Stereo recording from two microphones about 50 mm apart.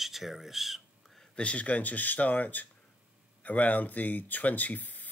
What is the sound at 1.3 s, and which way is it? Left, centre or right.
Speech, left.